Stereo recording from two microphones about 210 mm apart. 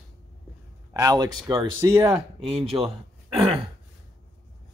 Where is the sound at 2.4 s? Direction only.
25° right (ahead or behind).